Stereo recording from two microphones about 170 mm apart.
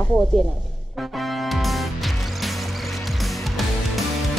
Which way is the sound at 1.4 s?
Centre (ahead or behind).